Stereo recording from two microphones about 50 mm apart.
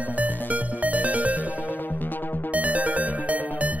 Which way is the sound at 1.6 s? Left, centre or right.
Left.